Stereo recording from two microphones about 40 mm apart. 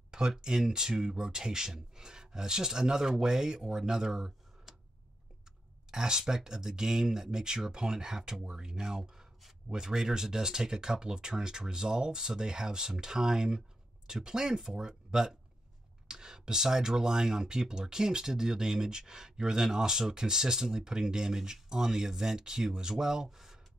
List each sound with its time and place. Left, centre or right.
0.4 s speech: centre
5.9 s speech: centre